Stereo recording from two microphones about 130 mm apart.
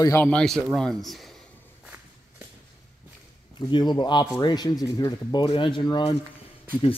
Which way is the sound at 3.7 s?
35° left (ahead or behind).